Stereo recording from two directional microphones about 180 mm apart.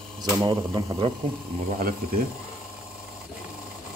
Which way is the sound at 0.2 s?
25° right (ahead or behind).